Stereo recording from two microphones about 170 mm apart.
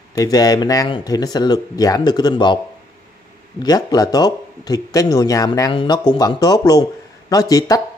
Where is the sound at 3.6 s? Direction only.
25° left (ahead or behind).